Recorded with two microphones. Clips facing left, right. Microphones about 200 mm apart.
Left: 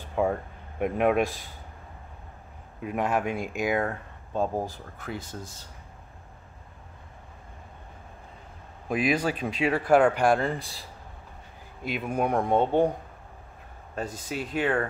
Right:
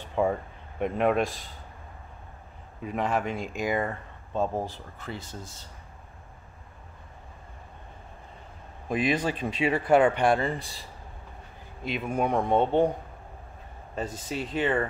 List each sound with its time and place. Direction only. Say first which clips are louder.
0.1 s speech: even; centre (ahead or behind)
2.8 s speech: left 1 dB; 5° left (ahead or behind)
8.8 s speech: left 1 dB; 5° left (ahead or behind)
11.9 s speech: even; 5° left (ahead or behind)
14.1 s speech: left 1 dB; 5° left (ahead or behind)